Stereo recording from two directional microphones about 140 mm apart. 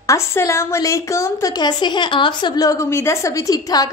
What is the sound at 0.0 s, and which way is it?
A woman's voice, 20° left (ahead or behind).